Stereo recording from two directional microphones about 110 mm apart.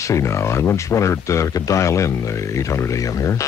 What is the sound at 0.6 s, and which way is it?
Speech, 25° left (ahead or behind).